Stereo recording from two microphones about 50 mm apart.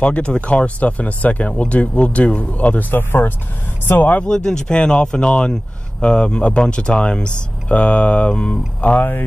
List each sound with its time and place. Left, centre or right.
0.0 s speech: left
4.2 s speech: centre